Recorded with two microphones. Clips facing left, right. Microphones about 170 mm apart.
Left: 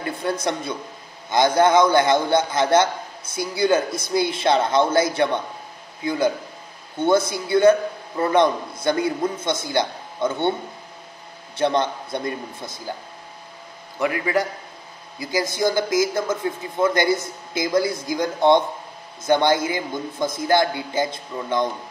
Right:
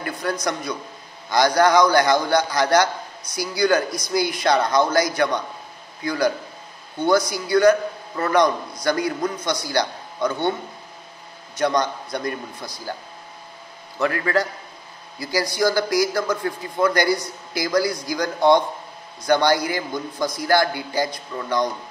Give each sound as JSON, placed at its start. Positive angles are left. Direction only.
{"t": 0.0, "sound": "a man's voice", "side_deg": 25}
{"t": 11.5, "sound": "a man's voice", "side_deg": 25}
{"t": 13.9, "sound": "a man's voice", "side_deg": 15}